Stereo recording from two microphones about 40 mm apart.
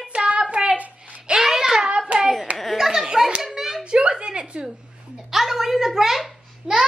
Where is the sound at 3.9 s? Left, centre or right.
Right.